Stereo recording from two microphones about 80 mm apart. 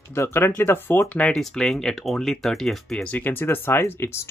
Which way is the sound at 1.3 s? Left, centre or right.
Centre.